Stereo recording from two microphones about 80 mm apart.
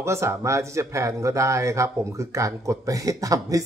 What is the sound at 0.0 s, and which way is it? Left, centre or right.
Speech, right.